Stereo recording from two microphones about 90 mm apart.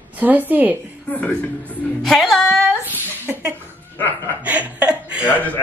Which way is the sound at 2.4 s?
25° right (ahead or behind).